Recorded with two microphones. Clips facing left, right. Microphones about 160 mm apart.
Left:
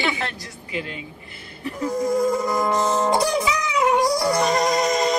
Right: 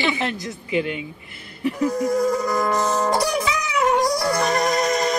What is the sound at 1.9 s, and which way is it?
Music, 25° left (ahead or behind).